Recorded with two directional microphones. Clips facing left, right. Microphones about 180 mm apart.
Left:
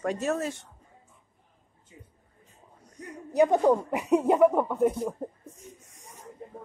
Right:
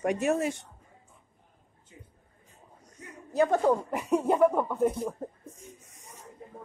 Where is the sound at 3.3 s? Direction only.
15° left (ahead or behind).